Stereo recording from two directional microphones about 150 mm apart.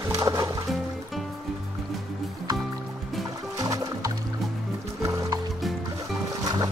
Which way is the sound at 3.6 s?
25° right (ahead or behind).